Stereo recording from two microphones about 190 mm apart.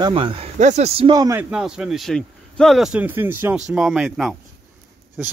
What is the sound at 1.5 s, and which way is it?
A man's voice, 5° right (ahead or behind).